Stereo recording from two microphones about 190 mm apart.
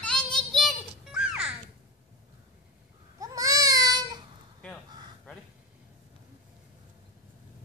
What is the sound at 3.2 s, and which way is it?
Baby cry, 20° right (ahead or behind).